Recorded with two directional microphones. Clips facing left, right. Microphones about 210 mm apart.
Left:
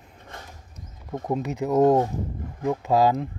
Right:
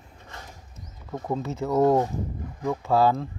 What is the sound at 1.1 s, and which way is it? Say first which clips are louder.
Speech: left 2 dB; 15° left (ahead or behind).